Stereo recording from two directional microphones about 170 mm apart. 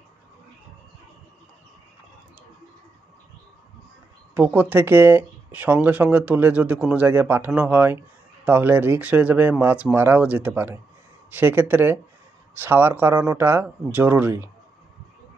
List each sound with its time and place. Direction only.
4.4 s speech: 10° right (ahead or behind)